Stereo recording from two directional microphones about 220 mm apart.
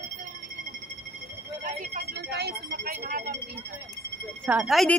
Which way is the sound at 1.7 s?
40° right (ahead or behind).